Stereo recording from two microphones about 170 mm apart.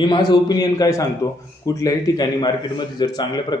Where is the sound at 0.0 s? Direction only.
25° left (ahead or behind).